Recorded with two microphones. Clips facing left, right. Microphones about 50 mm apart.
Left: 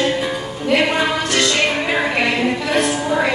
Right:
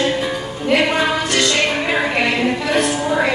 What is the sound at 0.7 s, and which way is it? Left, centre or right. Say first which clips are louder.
Music: right 1 dB; centre.